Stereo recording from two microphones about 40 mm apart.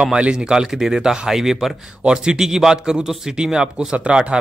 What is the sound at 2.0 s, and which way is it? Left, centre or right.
Speech, right.